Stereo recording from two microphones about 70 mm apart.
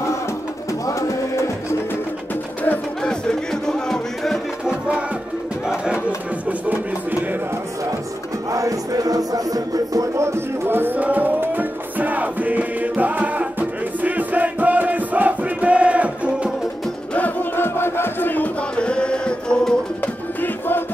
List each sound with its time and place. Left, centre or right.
0.8 s music: left
3.0 s music: centre
4.6 s music: centre
5.7 s crowd: centre
8.5 s music: right
10.1 s music: right; by 16.3 s centre
17.1 s battle cry: left
18.8 s music: centre
20.3 s music: left